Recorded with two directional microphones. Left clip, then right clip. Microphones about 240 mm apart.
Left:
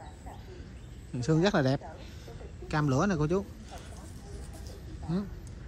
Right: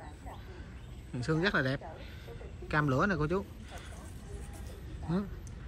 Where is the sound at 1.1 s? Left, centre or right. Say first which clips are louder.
Left 3 dB; centre.